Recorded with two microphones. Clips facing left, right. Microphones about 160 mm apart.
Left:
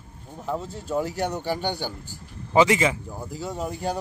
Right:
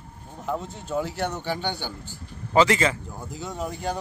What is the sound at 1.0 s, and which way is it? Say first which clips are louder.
Speech: left 1 dB; 40° left (ahead or behind).